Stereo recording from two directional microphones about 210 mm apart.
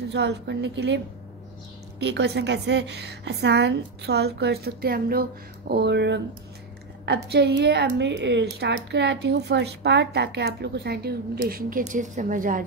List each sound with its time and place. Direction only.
0.1 s a woman's voice: 55° right (ahead or behind)